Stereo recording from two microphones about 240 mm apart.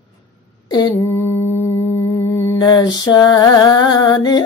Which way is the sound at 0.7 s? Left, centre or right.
Centre.